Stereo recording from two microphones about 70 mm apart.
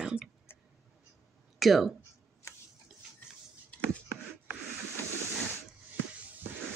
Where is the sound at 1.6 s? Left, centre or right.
Centre.